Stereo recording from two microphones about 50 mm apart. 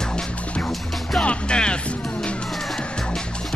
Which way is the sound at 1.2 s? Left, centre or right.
Centre.